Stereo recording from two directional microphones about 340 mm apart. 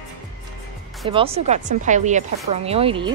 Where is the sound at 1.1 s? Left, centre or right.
Centre.